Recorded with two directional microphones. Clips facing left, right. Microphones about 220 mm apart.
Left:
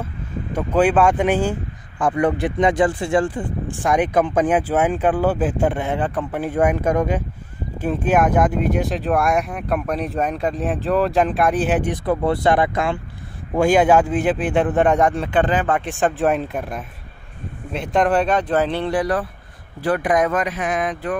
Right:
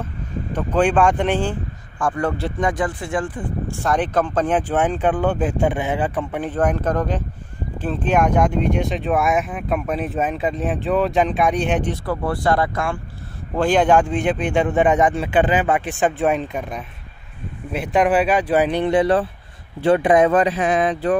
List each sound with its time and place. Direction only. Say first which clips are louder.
0.5 s speech: left 1 dB; 10° left (ahead or behind)
2.0 s speech: left 3 dB; 20° left (ahead or behind)
2.7 s speech: left 5 dB; 30° left (ahead or behind)
3.7 s speech: left 2 dB; 15° left (ahead or behind)
6.5 s speech: left 2 dB; 10° left (ahead or behind)
11.9 s speech: left 4 dB; 20° left (ahead or behind)
13.6 s speech: left 1 dB; 10° left (ahead or behind); by 21.2 s 30° right (ahead or behind)